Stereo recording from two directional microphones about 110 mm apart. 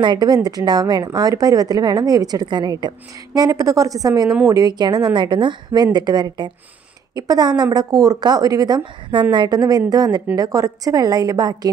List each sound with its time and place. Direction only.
0.0 s a woman's voice: 40° right (ahead or behind)